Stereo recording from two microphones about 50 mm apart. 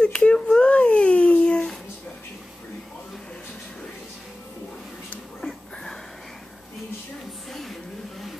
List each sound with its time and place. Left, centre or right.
0.0 s babbling: centre